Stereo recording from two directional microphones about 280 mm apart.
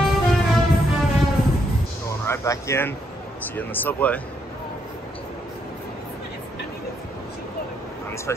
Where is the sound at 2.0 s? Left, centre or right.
Centre.